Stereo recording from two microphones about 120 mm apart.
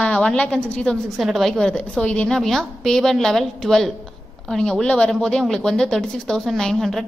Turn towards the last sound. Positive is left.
turn(degrees=0)  # may be behind; listen again after turning